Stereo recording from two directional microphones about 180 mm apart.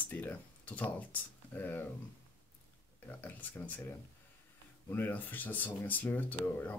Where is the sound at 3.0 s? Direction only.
10° left (ahead or behind).